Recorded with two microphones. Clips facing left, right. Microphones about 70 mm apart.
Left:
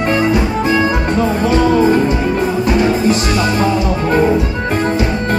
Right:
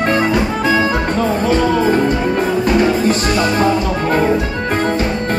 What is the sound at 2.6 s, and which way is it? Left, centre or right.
Music, right.